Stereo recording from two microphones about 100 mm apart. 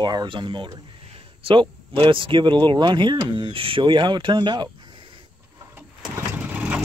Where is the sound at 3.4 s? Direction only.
60° right (ahead or behind).